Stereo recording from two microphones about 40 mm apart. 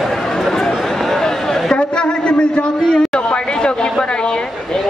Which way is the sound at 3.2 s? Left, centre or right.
Left.